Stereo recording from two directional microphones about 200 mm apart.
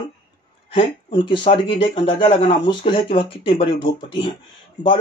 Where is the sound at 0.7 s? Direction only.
25° left (ahead or behind).